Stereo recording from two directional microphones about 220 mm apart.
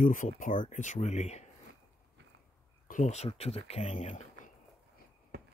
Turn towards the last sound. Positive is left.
turn(degrees=35)  # may be behind; listen again after turning